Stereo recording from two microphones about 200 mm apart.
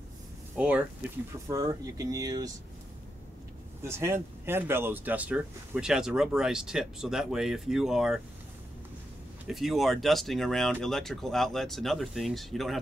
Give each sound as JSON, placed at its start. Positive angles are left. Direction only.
{"t": 0.6, "sound": "speech", "side_deg": -5}
{"t": 1.5, "sound": "speech", "side_deg": -20}
{"t": 3.8, "sound": "speech", "side_deg": -15}
{"t": 9.5, "sound": "speech", "side_deg": 0}